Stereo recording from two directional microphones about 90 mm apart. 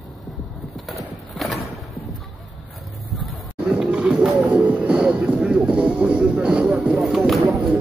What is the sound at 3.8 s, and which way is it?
Music, 10° right (ahead or behind).